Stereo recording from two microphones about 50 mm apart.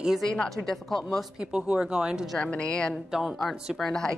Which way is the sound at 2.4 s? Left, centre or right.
Left.